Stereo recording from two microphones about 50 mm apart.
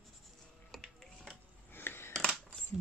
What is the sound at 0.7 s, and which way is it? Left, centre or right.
Music, centre.